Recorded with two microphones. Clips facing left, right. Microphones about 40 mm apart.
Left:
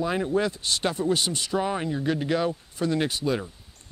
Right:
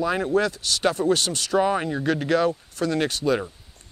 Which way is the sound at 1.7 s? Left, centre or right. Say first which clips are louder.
Right 3 dB; right.